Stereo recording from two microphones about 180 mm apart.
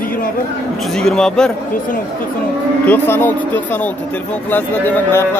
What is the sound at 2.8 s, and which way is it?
A man's voice, 10° left (ahead or behind).